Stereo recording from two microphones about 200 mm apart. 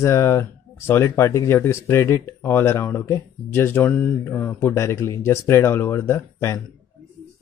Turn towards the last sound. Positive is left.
turn(degrees=10)  # may be behind; listen again after turning